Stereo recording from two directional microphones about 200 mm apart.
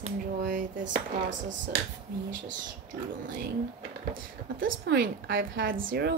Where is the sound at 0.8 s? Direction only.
65° right (ahead or behind).